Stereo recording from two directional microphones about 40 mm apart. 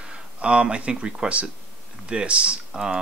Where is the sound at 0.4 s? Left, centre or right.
Right.